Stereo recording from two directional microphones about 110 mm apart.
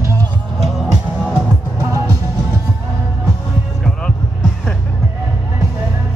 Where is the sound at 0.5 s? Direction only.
Centre (ahead or behind).